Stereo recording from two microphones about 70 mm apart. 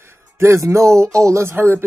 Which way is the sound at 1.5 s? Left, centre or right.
Right.